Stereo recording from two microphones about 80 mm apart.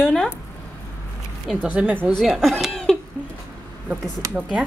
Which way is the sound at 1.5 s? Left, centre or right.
Centre.